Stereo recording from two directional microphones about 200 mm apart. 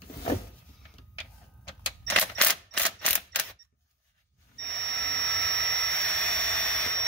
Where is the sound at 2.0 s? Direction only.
5° left (ahead or behind).